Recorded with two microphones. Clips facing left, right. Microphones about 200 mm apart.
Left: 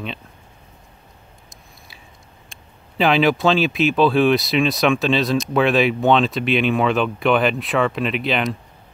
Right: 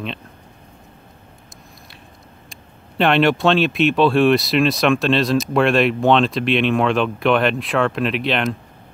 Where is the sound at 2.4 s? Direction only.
Centre (ahead or behind).